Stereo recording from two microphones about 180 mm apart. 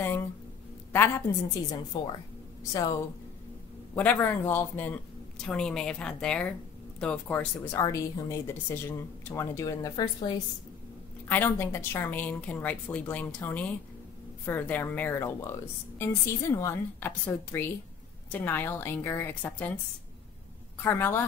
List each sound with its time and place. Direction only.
0.9 s a woman's voice: 15° left (ahead or behind)
3.9 s a woman's voice: 10° left (ahead or behind)
20.8 s a woman's voice: 10° left (ahead or behind)